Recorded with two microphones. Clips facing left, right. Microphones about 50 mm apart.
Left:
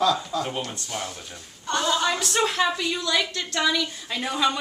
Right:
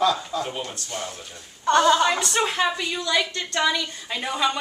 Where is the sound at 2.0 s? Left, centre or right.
Centre.